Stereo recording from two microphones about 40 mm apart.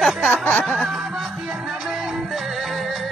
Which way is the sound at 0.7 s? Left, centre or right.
Centre.